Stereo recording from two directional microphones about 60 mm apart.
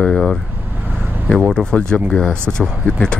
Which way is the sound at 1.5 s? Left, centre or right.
Centre.